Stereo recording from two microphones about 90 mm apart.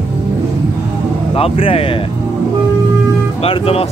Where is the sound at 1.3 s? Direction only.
90° left.